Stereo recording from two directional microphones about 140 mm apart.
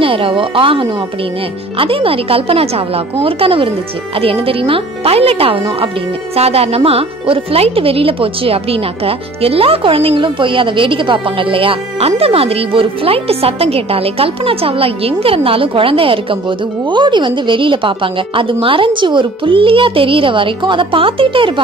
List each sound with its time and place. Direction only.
0.0 s speech: 40° right (ahead or behind)